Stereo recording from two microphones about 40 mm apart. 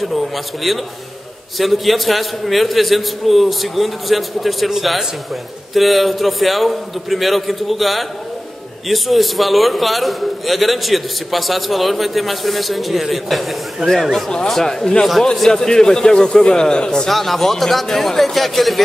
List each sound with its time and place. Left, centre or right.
0.7 s a man's voice: centre
17.1 s a man's voice: centre